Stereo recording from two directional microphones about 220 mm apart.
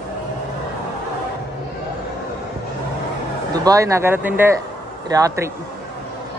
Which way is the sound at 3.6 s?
15° right (ahead or behind).